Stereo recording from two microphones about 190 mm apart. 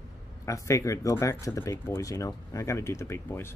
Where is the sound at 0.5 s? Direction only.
15° left (ahead or behind).